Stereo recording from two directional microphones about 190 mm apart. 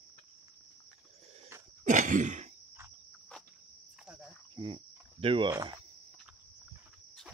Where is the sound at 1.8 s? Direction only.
40° right (ahead or behind).